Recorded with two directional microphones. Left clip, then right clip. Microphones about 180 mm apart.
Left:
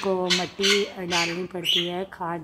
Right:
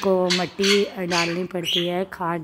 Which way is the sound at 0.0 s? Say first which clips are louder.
Right 3 dB; 20° right (ahead or behind).